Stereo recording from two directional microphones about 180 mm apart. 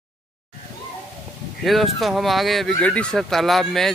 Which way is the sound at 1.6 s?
Centre (ahead or behind).